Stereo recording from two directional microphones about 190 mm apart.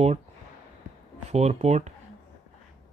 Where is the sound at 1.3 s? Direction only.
35° right (ahead or behind).